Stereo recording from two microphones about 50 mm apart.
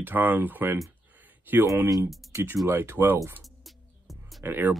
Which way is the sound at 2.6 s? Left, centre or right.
Right.